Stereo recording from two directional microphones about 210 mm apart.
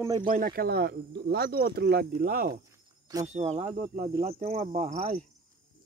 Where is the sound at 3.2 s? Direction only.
30° right (ahead or behind).